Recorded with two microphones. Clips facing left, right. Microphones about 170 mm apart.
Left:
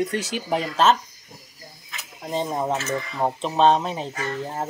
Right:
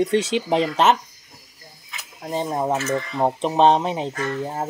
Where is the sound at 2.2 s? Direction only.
5° right (ahead or behind).